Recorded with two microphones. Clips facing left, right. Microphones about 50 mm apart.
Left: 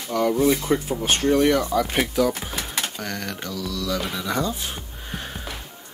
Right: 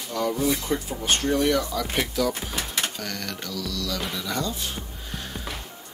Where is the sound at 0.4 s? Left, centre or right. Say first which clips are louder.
Left 5 dB; left.